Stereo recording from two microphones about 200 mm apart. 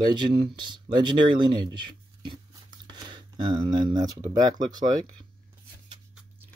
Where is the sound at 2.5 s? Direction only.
20° right (ahead or behind).